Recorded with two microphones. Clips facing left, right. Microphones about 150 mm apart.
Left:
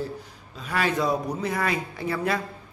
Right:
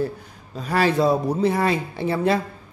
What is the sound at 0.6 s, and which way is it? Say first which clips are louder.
A man's voice: right 6 dB; 35° right (ahead or behind).